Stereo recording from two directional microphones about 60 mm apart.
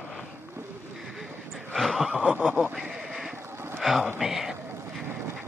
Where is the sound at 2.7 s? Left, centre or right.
Centre.